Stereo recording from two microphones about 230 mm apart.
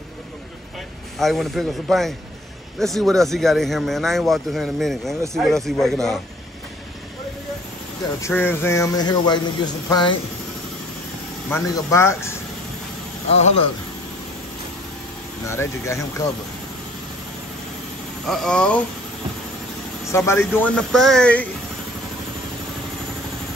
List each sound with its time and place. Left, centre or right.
1.1 s speech: centre
8.2 s speech: centre
11.4 s speech: centre
13.3 s speech: left
15.4 s speech: centre
18.2 s speech: centre
20.1 s speech: centre